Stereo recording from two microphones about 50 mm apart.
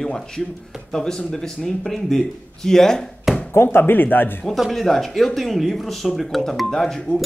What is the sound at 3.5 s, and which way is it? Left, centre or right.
Speech, left.